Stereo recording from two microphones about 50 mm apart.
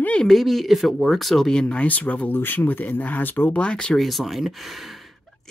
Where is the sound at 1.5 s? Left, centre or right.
Centre.